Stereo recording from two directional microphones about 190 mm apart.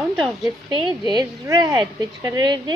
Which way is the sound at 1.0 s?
20° right (ahead or behind).